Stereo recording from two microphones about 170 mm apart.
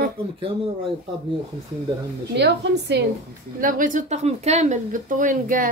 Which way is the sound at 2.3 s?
90° right.